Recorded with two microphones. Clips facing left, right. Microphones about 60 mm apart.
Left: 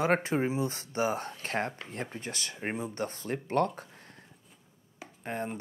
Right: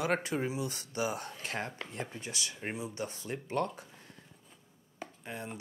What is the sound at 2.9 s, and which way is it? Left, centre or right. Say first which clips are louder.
Speech: left 4 dB; left.